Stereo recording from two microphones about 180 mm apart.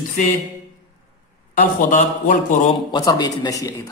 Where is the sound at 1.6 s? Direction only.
50° left (ahead or behind).